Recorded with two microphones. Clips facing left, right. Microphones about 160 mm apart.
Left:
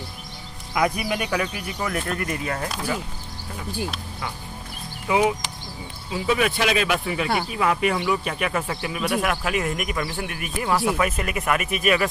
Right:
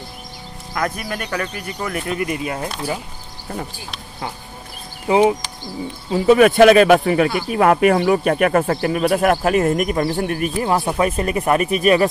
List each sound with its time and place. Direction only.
0.7 s speech: 10° left (ahead or behind); by 2.7 s 15° right (ahead or behind)
5.0 s speech: 35° right (ahead or behind)
6.0 s speech: 45° right (ahead or behind)